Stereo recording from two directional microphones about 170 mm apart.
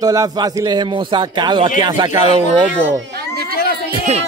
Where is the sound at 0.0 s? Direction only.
20° right (ahead or behind).